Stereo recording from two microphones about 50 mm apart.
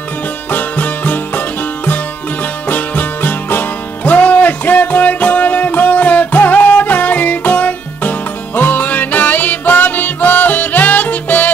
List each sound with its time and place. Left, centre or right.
0.5 s music: left
2.7 s music: left